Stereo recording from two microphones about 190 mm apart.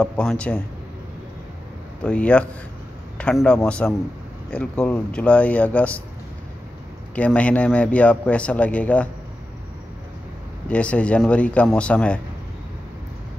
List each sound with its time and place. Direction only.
0.0 s a man's voice: 5° left (ahead or behind)
2.0 s a man's voice: 5° left (ahead or behind)
7.2 s speech: 5° left (ahead or behind)
10.7 s speech: 5° left (ahead or behind)